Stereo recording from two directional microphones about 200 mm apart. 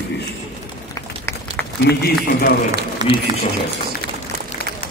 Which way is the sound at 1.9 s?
50° left (ahead or behind).